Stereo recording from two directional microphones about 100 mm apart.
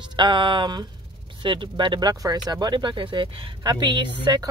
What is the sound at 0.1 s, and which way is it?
Speech, 55° right (ahead or behind).